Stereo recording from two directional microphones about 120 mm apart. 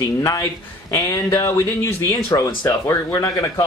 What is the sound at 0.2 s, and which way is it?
Speech, 30° left (ahead or behind).